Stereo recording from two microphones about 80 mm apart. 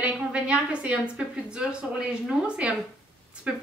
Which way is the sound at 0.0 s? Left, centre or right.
Centre.